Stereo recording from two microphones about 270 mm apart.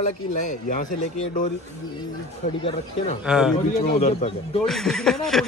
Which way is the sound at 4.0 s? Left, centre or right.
Left.